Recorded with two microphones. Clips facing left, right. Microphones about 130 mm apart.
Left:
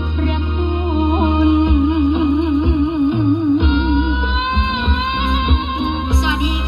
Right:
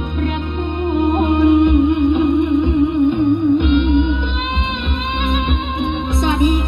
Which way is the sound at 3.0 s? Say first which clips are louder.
Right 1 dB; 55° right (ahead or behind).